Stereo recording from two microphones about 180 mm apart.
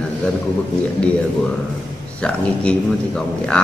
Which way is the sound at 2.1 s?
5° left (ahead or behind).